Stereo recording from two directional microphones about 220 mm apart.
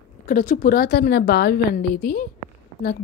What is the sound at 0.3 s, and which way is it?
A woman's voice, 40° left (ahead or behind).